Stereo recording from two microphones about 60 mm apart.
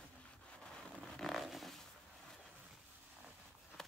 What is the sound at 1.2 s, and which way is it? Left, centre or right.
Zipper, centre.